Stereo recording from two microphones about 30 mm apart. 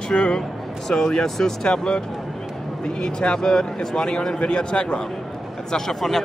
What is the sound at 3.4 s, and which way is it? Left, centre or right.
Speech, left.